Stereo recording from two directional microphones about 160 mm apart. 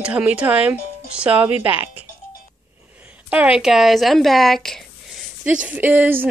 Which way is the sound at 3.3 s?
5° right (ahead or behind).